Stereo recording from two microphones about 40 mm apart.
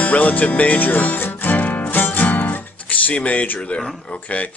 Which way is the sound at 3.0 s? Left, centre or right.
Left.